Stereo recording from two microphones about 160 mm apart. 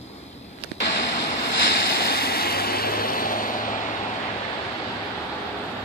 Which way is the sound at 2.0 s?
75° left (ahead or behind).